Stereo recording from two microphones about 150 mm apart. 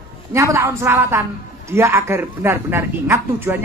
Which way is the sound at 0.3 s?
20° right (ahead or behind).